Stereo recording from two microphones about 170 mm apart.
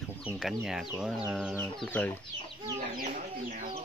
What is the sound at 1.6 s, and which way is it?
Speech, 10° left (ahead or behind).